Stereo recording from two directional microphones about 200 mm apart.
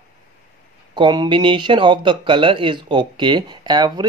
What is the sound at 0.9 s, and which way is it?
Speech, 20° right (ahead or behind).